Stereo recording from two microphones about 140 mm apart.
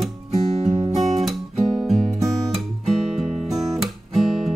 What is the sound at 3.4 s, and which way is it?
Guitar, centre (ahead or behind).